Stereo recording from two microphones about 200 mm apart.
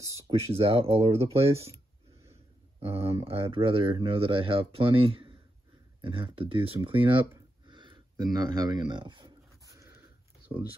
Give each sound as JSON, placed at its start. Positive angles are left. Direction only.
{"t": 0.2, "sound": "speech", "side_deg": -25}
{"t": 2.8, "sound": "speech", "side_deg": -30}